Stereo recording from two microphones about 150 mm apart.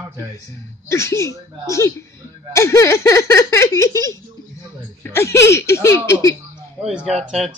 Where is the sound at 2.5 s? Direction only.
20° left (ahead or behind).